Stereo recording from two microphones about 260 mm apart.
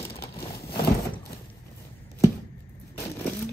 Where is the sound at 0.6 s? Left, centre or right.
Centre.